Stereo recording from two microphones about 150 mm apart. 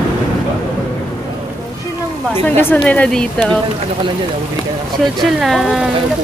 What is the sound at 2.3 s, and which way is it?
A woman's voice, 15° left (ahead or behind).